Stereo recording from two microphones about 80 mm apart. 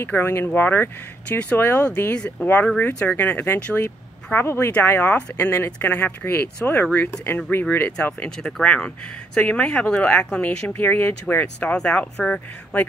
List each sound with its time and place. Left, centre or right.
0.0 s speech: left
8.4 s speech: centre